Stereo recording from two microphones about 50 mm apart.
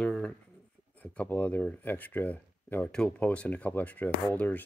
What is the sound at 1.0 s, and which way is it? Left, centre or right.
Speech, left.